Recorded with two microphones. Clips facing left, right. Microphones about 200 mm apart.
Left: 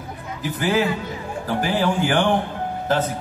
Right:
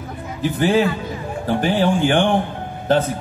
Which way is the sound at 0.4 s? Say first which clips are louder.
Right 4 dB; 30° right (ahead or behind).